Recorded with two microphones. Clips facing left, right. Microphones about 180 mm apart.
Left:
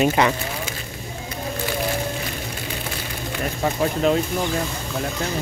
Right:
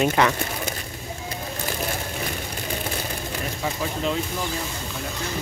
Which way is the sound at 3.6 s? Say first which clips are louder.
Left 7 dB; 50° left (ahead or behind).